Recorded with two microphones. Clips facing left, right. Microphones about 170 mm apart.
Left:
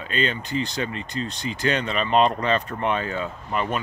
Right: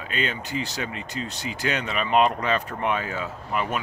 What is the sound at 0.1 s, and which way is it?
Speech, 10° right (ahead or behind).